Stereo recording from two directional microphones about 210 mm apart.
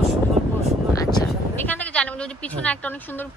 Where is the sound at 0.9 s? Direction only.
15° left (ahead or behind).